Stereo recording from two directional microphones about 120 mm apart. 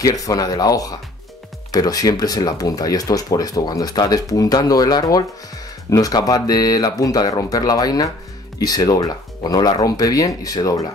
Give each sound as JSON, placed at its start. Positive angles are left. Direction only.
{"t": 0.0, "sound": "speech", "side_deg": 30}